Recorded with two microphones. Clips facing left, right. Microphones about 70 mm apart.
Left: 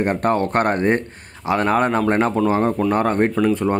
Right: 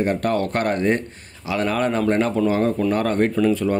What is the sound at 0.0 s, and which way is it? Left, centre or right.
Speech, left.